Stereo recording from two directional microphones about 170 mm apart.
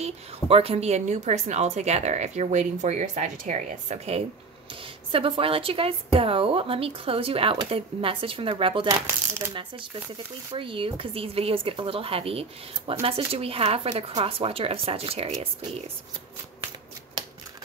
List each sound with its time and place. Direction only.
0.0 s a woman's voice: 35° right (ahead or behind)